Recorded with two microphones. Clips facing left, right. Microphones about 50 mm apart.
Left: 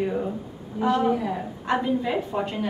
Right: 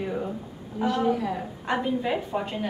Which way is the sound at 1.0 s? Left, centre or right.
Centre.